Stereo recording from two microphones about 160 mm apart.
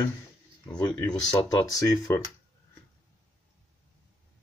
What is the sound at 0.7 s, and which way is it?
Speech, 25° left (ahead or behind).